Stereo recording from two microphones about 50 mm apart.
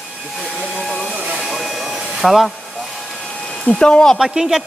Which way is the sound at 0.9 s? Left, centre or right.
Centre.